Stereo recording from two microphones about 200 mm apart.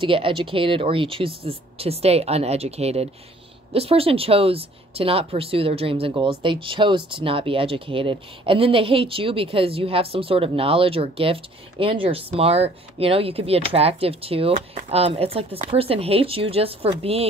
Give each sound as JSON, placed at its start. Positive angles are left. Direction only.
{"t": 0.0, "sound": "a woman's voice", "side_deg": -25}